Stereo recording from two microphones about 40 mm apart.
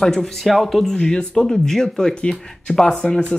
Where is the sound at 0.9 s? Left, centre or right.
Left.